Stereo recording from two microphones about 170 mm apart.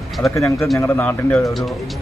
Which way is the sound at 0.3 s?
15° left (ahead or behind).